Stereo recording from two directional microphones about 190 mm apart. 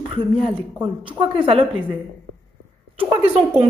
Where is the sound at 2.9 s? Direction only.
30° right (ahead or behind).